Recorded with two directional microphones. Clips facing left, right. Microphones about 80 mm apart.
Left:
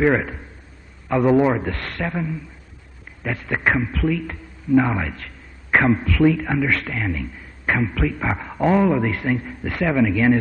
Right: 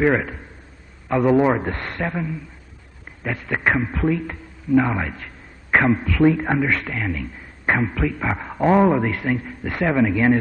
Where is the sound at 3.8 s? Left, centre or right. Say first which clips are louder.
Right 1 dB; right.